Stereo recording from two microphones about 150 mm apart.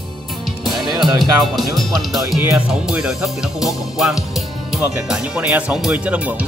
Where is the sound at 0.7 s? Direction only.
Centre (ahead or behind).